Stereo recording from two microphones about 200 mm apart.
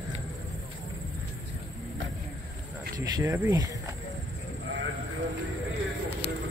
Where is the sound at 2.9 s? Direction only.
15° right (ahead or behind).